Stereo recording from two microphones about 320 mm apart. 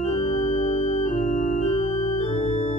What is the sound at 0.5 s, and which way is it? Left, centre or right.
Organ, centre.